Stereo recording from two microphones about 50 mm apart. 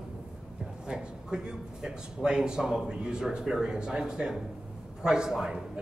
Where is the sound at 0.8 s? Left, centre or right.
Centre.